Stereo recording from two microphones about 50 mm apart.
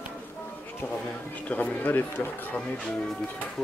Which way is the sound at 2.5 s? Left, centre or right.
Left.